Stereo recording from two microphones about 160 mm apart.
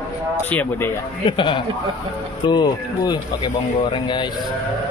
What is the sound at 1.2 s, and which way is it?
A man's voice, 30° left (ahead or behind).